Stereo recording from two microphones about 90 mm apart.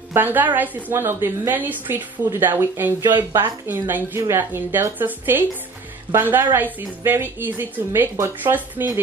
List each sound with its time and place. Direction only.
0.1 s a woman's voice: 20° right (ahead or behind)